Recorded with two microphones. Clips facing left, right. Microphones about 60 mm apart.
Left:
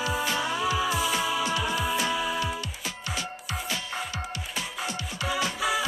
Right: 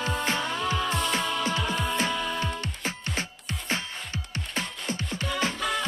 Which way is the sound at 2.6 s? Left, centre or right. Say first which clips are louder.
Right 2 dB; right.